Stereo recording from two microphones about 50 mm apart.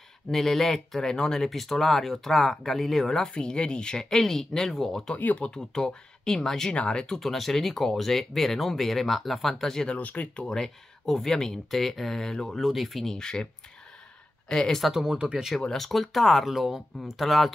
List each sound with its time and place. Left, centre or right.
0.3 s speech: centre
3.3 s speech: centre
5.1 s speech: left
5.5 s speech: centre
7.2 s speech: centre
9.9 s speech: left; by 12.5 s centre
12.5 s speech: centre
14.5 s speech: centre
14.8 s speech: centre
15.1 s speech: centre
15.7 s speech: centre